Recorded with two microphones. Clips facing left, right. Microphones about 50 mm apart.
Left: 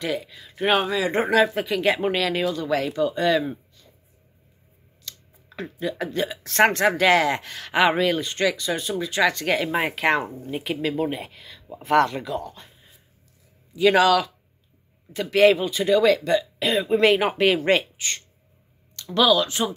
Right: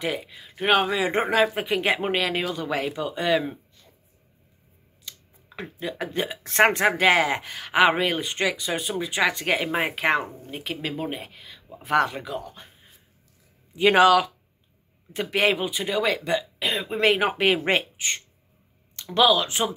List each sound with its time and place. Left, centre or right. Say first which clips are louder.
0.0 s speech: left 1 dB; centre
0.6 s speech: even; centre
1.0 s speech: left 2 dB; right
5.1 s a sound: left 1 dB; centre
5.6 s speech: left 3 dB; centre
8.1 s speech: left 3 dB; centre
13.7 s speech: right 1 dB; right; by 16.6 s centre
16.6 s speech: left 4 dB; centre; by 19.6 s right